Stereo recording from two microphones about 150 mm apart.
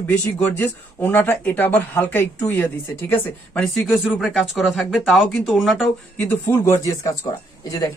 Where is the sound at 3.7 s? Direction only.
Centre (ahead or behind).